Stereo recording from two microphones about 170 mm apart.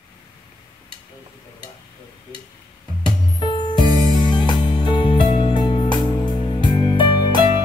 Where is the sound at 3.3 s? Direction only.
25° left (ahead or behind).